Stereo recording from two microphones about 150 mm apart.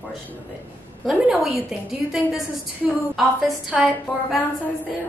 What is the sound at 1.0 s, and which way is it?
A woman's voice, centre (ahead or behind).